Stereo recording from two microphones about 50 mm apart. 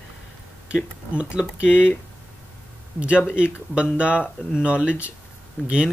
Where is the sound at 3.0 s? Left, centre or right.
Right.